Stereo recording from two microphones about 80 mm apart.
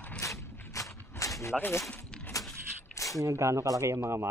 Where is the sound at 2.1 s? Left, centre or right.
Centre.